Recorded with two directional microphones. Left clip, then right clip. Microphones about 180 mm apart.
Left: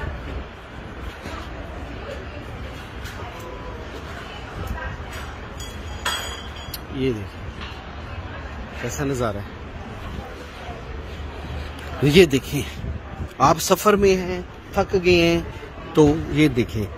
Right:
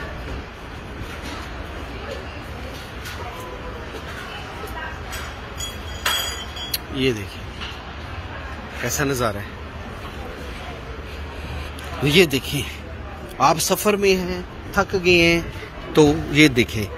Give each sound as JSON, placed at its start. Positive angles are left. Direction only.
{"t": 6.7, "sound": "a sound", "side_deg": 0}
{"t": 8.8, "sound": "a man's voice", "side_deg": 5}
{"t": 12.0, "sound": "a man's voice", "side_deg": 40}
{"t": 15.9, "sound": "a man's voice", "side_deg": 20}
{"t": 16.3, "sound": "speech", "side_deg": 10}